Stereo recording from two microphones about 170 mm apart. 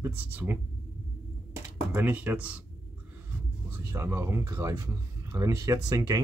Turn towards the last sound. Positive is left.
turn(degrees=-20)  # may be behind; listen again after turning